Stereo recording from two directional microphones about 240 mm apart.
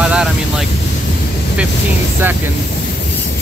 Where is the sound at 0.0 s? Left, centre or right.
Centre.